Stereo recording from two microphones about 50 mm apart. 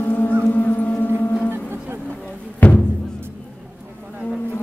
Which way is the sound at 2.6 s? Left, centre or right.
Left.